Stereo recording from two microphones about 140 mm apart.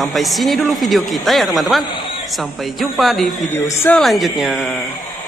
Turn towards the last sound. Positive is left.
turn(degrees=0)  # may be behind; listen again after turning